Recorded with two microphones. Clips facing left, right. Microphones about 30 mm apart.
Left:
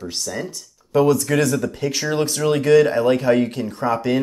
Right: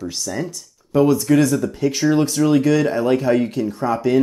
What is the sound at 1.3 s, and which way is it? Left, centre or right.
Speech, centre.